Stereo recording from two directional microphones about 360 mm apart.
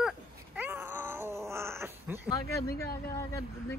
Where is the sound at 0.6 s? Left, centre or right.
Centre.